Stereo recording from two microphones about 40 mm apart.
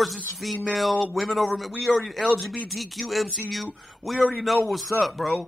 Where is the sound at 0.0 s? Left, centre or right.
Centre.